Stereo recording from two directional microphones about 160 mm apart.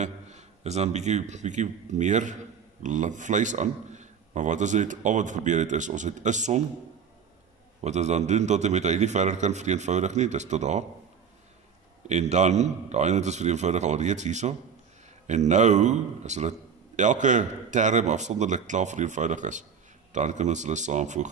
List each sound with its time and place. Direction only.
0.0 s a man's voice: 45° right (ahead or behind)
7.8 s a man's voice: 45° right (ahead or behind)
12.1 s a man's voice: 45° right (ahead or behind)